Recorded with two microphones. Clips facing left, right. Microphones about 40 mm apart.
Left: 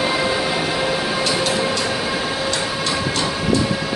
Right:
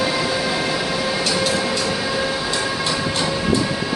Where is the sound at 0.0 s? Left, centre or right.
Left.